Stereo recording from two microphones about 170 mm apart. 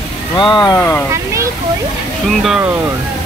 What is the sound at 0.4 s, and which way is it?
Speech, 25° left (ahead or behind).